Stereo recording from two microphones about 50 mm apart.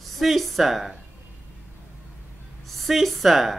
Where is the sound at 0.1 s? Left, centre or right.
Centre.